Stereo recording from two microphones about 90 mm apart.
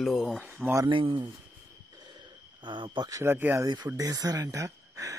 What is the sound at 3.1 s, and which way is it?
Speech, 25° right (ahead or behind).